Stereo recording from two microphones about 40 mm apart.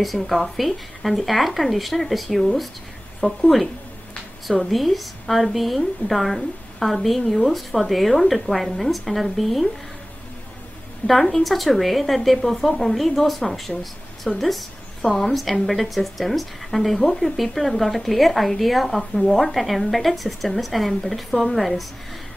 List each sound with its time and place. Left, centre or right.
0.0 s a woman's voice: centre
4.6 s a woman's voice: centre
11.1 s a woman's voice: centre
18.9 s speech: centre
19.3 s a woman's voice: centre